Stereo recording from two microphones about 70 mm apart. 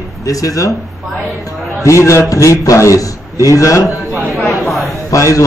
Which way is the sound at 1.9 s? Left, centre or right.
Left.